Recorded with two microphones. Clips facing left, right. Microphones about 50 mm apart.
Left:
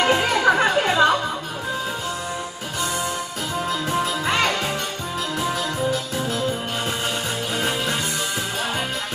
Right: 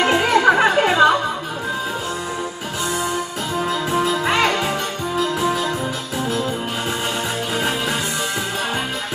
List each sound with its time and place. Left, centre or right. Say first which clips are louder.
0.0 s music: right 3 dB; centre
3.5 s music: right 3 dB; centre